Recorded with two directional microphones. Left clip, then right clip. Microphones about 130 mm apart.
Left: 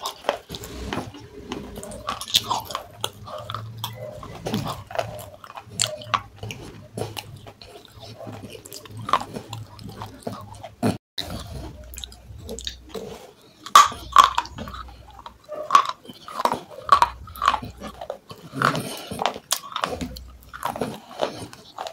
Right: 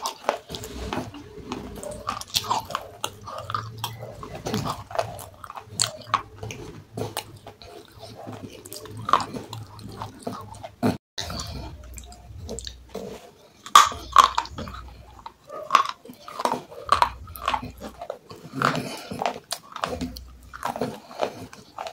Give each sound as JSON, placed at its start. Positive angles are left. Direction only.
{"t": 0.0, "sound": "a sound", "side_deg": 5}
{"t": 1.5, "sound": "chewing", "side_deg": 5}
{"t": 12.5, "sound": "chewing", "side_deg": 15}
{"t": 13.7, "sound": "a sound", "side_deg": 10}
{"t": 15.2, "sound": "chewing", "side_deg": 5}
{"t": 20.5, "sound": "biting", "side_deg": 5}